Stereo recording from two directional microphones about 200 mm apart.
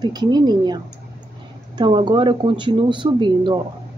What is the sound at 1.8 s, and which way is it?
Speech, 25° right (ahead or behind).